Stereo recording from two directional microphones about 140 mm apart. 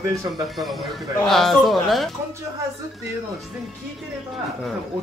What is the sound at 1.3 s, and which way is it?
Speech, centre (ahead or behind).